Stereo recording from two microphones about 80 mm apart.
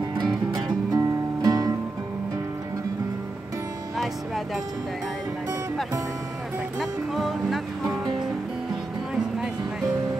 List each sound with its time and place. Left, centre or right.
0.9 s music: right
6.8 s music: centre
9.2 s a sound: centre